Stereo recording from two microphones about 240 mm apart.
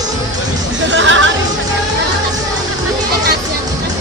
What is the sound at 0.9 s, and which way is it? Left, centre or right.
Chatter, right.